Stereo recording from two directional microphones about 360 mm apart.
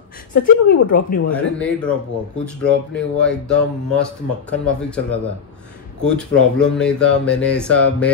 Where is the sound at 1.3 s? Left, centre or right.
Centre.